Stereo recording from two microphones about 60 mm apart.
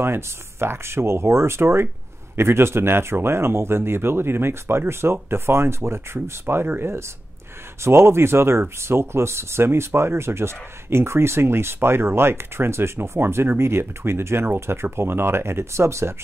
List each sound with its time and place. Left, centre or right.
0.0 s speech: right